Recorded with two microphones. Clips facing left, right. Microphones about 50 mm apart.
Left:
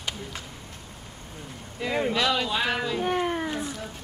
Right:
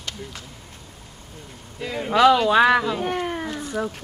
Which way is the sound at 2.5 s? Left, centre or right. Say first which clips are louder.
Right 11 dB; right.